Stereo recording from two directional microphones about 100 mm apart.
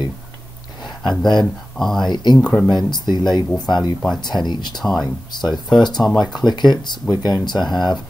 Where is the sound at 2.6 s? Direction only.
45° left (ahead or behind).